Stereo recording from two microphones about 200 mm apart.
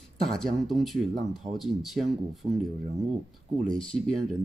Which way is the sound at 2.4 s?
25° right (ahead or behind).